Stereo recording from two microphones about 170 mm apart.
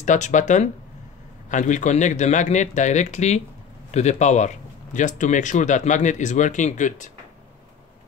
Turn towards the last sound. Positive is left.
turn(degrees=45)  # may be behind; listen again after turning